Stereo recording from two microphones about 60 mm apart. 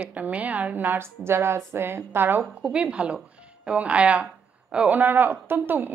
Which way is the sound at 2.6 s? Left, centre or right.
Centre.